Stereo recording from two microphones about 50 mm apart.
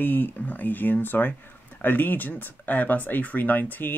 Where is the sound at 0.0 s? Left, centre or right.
Left.